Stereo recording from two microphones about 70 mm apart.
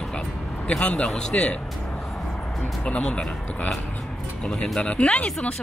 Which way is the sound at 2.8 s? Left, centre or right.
Centre.